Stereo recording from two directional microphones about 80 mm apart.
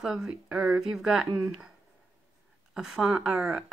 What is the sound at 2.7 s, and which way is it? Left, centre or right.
Speech, centre.